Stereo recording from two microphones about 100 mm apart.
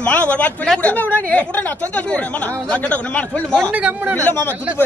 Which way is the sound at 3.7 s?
15° right (ahead or behind).